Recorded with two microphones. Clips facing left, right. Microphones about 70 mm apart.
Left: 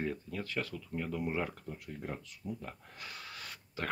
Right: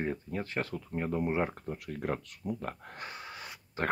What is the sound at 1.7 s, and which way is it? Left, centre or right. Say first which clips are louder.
Speech: right 10 dB; right.